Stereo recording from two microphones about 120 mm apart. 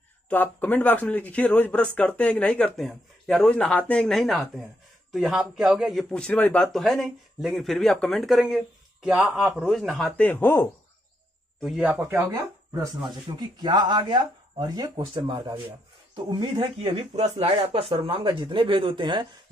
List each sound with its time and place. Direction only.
0.3 s speech: 15° left (ahead or behind); by 6.0 s centre (ahead or behind)
6.1 s speech: 10° left (ahead or behind)
10.2 s speech: 15° left (ahead or behind)
11.8 s speech: 15° right (ahead or behind)
12.7 s speech: 35° right (ahead or behind)
16.9 s speech: 60° right (ahead or behind)
18.0 s speech: 45° right (ahead or behind)